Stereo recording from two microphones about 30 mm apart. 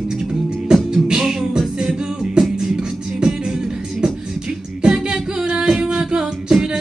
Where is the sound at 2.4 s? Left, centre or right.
Right.